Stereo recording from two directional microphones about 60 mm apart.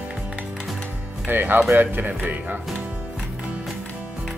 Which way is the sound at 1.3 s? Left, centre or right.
Right.